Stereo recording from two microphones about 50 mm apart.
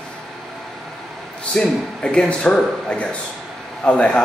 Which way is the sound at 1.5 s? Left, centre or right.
Centre.